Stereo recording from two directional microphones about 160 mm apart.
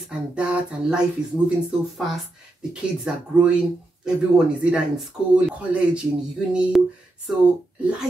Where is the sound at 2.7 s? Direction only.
5° right (ahead or behind).